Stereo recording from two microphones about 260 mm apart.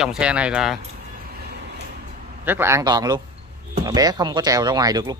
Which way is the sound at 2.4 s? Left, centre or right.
Centre.